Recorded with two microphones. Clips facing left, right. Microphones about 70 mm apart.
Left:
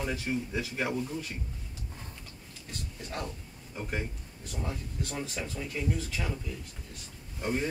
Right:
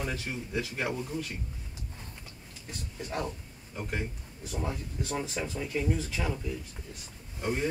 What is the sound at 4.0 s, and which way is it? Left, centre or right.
Speech, centre.